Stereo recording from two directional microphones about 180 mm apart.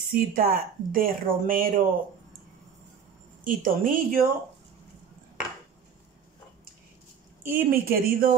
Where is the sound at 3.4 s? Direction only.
50° right (ahead or behind).